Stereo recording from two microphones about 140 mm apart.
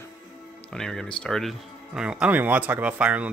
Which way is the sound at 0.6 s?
5° left (ahead or behind).